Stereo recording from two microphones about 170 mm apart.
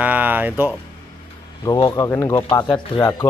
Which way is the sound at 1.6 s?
20° left (ahead or behind).